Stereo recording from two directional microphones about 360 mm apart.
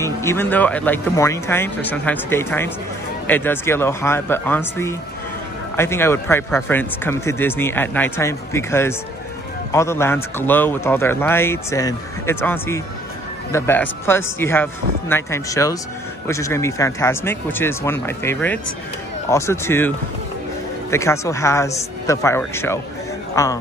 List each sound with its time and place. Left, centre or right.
0.0 s speech: centre
20.9 s speech: centre